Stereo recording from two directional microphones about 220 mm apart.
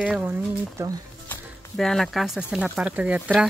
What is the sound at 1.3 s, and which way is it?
Speech, centre (ahead or behind).